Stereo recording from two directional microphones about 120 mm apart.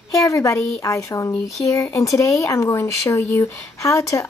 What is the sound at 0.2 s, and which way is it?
Speech, 25° left (ahead or behind).